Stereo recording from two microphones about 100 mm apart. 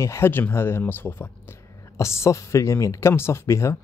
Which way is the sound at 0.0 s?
25° left (ahead or behind).